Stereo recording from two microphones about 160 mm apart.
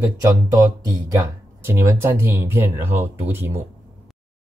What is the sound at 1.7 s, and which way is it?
Speech, 15° right (ahead or behind).